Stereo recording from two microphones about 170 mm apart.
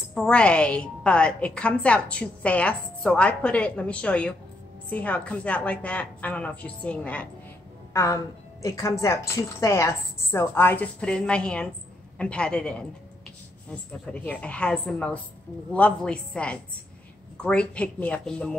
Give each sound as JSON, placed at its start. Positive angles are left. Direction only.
{"t": 0.1, "sound": "a woman's voice", "side_deg": 5}
{"t": 14.1, "sound": "a woman's voice", "side_deg": 10}